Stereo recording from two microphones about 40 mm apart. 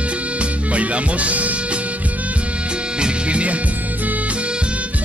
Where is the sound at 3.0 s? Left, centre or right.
Right.